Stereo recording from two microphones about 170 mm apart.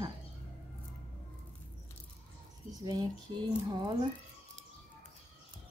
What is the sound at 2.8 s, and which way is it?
A woman's voice, 25° right (ahead or behind).